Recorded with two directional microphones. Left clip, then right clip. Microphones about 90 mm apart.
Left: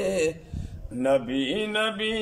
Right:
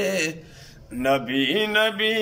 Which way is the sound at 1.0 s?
35° left (ahead or behind).